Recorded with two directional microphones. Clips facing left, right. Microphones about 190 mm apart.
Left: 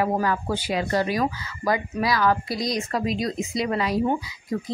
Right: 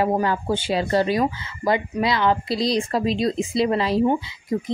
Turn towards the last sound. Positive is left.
turn(degrees=-25)  # may be behind; listen again after turning